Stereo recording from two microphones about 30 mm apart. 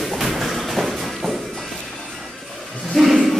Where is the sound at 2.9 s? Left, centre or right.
Centre.